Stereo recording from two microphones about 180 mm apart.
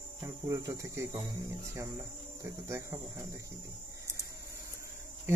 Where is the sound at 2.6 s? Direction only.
15° right (ahead or behind).